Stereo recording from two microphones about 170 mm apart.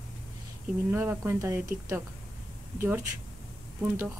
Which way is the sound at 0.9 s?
10° right (ahead or behind).